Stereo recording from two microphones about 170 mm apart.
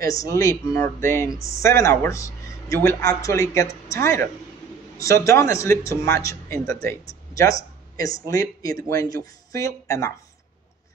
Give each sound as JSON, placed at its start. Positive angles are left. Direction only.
{"t": 0.0, "sound": "a man's voice", "side_deg": 20}